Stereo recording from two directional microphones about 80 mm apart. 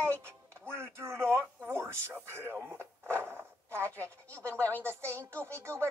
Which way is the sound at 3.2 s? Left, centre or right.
Right.